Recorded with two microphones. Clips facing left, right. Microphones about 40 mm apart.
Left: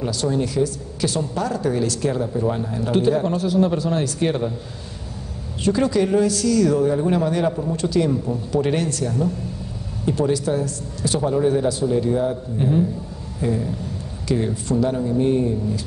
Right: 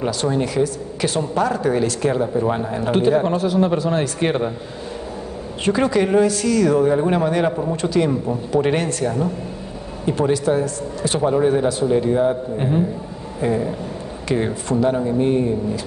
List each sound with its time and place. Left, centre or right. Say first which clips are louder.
0.0 s speech: right 2 dB; right
5.6 s speech: right 1 dB; right